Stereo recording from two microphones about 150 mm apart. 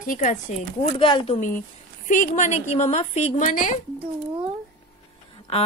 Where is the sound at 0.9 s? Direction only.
35° left (ahead or behind).